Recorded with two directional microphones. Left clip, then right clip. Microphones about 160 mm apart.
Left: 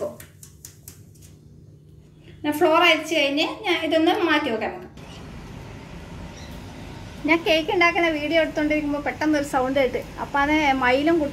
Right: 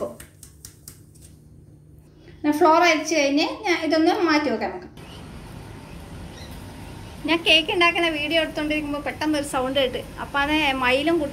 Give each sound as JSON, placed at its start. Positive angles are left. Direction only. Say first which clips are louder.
{"t": 2.4, "sound": "a woman's voice", "louder": "right 1 dB", "side_deg": -20}
{"t": 7.2, "sound": "a woman's voice", "louder": "right 1 dB", "side_deg": 25}
{"t": 8.7, "sound": "a woman's voice", "louder": "left 2 dB", "side_deg": 20}
{"t": 9.3, "sound": "a woman's voice", "louder": "left 2 dB", "side_deg": 40}
{"t": 9.6, "sound": "a woman's voice", "louder": "left 1 dB", "side_deg": 30}